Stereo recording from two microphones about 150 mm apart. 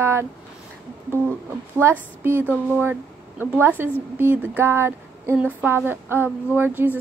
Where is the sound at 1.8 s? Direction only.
15° right (ahead or behind).